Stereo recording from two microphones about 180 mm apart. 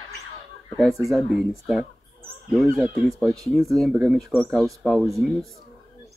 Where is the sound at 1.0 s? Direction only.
Centre (ahead or behind).